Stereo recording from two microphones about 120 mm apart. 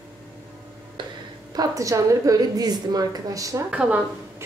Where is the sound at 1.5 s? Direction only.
30° right (ahead or behind).